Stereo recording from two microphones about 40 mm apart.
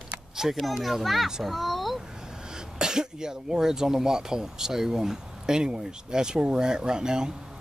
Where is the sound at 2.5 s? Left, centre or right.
Centre.